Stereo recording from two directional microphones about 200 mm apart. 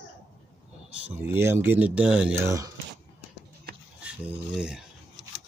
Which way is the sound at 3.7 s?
50° right (ahead or behind).